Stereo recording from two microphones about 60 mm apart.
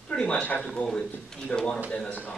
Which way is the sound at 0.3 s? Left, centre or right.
Left.